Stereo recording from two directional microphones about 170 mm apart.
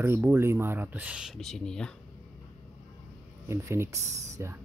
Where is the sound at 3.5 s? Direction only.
15° right (ahead or behind).